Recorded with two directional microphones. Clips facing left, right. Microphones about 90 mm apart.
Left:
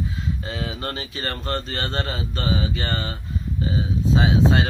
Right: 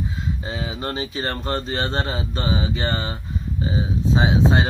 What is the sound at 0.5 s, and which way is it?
Speech, 20° right (ahead or behind).